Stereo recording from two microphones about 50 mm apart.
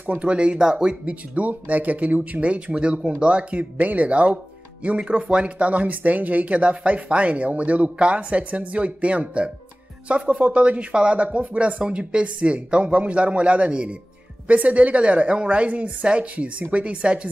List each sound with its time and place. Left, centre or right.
0.0 s speech: right